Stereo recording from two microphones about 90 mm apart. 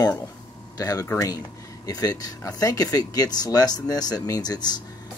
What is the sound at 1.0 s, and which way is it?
Speech, 25° left (ahead or behind).